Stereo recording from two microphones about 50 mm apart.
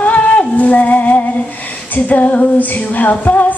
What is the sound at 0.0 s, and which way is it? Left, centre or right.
Music, left.